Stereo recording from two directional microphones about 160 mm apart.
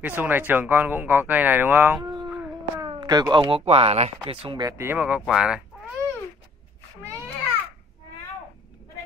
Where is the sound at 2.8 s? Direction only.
30° right (ahead or behind).